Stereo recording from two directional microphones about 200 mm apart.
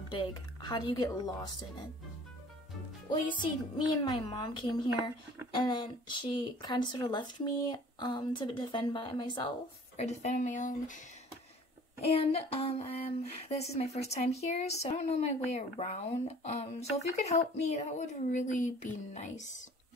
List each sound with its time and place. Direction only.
0.1 s speech: 20° left (ahead or behind)
3.7 s speech: 20° left (ahead or behind)
9.9 s speech: 35° left (ahead or behind)
12.1 s speech: 30° left (ahead or behind)